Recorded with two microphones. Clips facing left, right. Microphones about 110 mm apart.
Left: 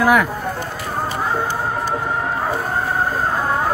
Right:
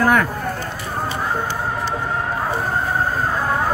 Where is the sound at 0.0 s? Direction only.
10° left (ahead or behind).